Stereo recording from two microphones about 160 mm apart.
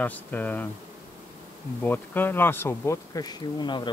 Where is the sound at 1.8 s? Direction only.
10° left (ahead or behind).